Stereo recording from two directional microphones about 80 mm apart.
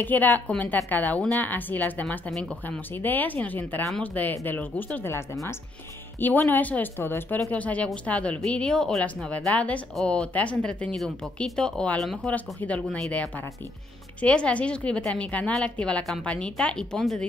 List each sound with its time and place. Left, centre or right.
0.0 s speech: left
5.1 s speech: left
6.1 s a woman's voice: left; by 12.3 s centre
12.3 s a woman's voice: centre
14.2 s a woman's voice: centre